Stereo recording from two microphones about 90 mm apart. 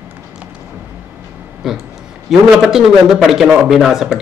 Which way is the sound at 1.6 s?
5° right (ahead or behind).